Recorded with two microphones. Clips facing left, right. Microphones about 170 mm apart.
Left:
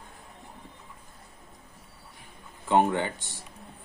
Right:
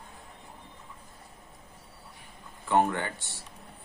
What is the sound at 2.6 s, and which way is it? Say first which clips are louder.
Speech: left 2 dB; 15° left (ahead or behind).